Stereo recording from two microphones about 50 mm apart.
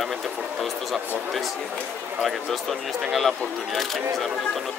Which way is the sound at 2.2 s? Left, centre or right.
Centre.